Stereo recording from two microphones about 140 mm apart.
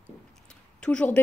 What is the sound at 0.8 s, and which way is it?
Speech, 10° left (ahead or behind).